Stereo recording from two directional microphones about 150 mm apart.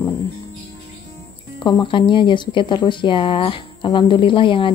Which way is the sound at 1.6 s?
30° left (ahead or behind).